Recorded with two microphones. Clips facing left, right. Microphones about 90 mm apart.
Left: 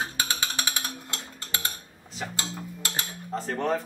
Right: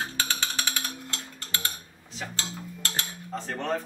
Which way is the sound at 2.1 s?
10° left (ahead or behind).